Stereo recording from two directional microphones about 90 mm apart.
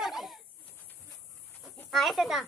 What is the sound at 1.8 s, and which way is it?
Speech, centre (ahead or behind).